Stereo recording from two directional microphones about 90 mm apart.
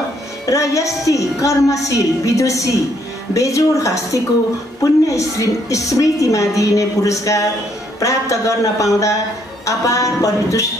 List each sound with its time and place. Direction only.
0.5 s speech: 35° left (ahead or behind)